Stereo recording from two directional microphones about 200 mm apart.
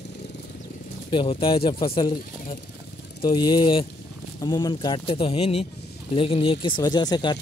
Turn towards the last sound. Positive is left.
turn(degrees=20)  # may be behind; listen again after turning